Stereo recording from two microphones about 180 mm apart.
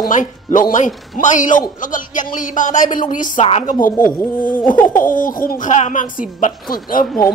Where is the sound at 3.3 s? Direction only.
30° left (ahead or behind).